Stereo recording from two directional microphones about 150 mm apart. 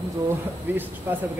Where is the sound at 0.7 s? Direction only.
10° right (ahead or behind).